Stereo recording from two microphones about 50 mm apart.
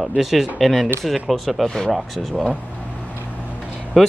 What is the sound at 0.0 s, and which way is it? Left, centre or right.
Speech, centre.